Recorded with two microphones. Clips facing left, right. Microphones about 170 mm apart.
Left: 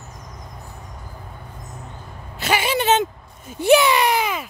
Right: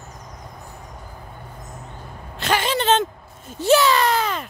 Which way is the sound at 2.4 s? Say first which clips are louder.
Left 1 dB; 10° left (ahead or behind).